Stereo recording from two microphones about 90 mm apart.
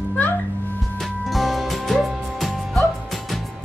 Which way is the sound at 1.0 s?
Centre (ahead or behind).